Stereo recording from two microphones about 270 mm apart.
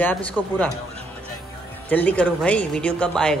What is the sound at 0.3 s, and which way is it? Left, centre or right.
Speech, centre.